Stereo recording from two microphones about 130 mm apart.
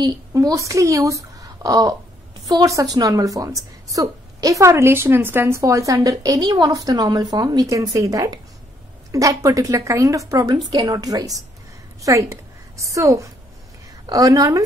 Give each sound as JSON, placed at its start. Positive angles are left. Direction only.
{"t": 0.0, "sound": "a woman's voice", "side_deg": -30}